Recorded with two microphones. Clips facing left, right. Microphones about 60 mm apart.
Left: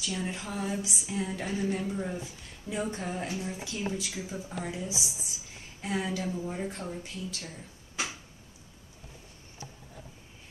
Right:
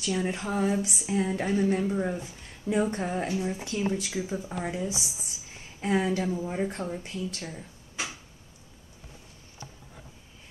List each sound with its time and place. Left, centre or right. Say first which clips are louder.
0.0 s speech: right 5 dB; right
7.0 s speech: right 4 dB; right